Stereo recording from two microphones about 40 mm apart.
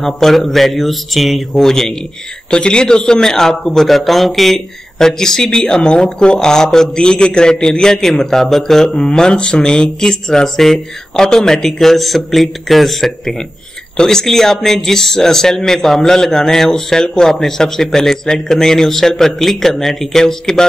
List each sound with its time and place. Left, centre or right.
0.0 s speech: centre
2.5 s speech: left
8.9 s speech: centre